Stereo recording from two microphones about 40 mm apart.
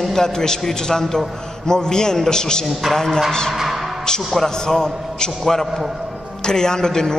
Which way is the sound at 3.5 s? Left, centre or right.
Centre.